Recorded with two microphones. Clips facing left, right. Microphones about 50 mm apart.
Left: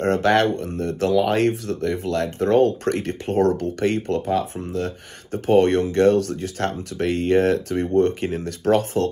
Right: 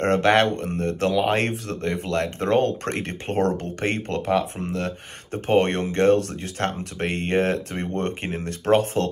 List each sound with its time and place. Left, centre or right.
0.0 s speech: right